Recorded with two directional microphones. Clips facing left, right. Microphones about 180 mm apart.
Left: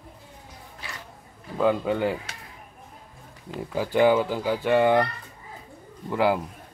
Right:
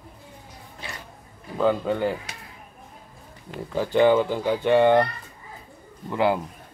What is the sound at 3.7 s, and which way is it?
Speech, 10° left (ahead or behind).